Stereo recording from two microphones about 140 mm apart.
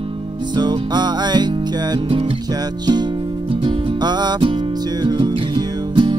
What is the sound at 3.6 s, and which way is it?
Music, 30° right (ahead or behind).